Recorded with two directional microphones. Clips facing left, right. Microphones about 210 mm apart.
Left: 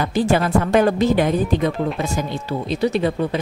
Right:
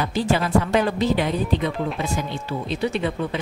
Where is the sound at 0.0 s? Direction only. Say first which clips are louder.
Left 4 dB; 50° left (ahead or behind).